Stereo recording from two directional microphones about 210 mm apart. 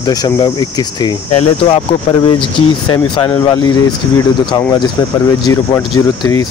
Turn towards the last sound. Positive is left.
turn(degrees=20)  # may be behind; listen again after turning